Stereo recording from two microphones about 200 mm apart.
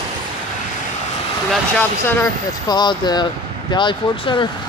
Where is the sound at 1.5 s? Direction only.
10° left (ahead or behind).